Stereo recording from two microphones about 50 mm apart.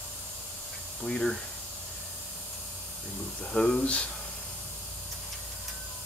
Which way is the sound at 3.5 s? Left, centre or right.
Centre.